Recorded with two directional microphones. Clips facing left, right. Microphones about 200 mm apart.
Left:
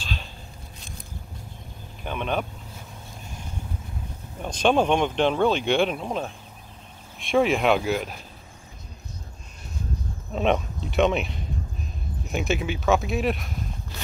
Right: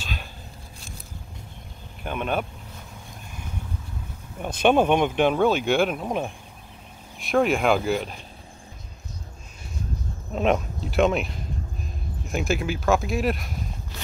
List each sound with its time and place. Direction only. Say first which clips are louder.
2.0 s speech: right 1 dB; 5° right (ahead or behind)
4.4 s speech: right 2 dB; 10° right (ahead or behind)
10.3 s speech: right 1 dB; centre (ahead or behind)